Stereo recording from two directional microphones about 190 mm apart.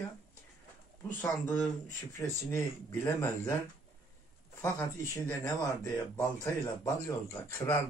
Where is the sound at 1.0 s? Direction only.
10° left (ahead or behind).